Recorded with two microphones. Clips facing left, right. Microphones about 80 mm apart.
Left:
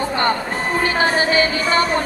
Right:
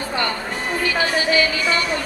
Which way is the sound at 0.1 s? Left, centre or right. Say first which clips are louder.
Left 4 dB; left.